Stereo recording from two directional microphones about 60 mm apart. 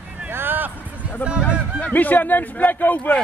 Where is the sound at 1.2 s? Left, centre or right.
Left.